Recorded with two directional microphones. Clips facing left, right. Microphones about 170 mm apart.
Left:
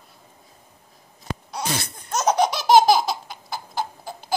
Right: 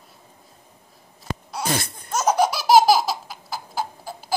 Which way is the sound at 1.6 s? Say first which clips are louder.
Right 3 dB; 50° right (ahead or behind).